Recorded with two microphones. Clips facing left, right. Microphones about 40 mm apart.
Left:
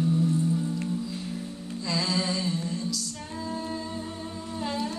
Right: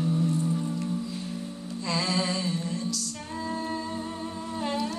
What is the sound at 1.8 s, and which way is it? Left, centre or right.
Music, right.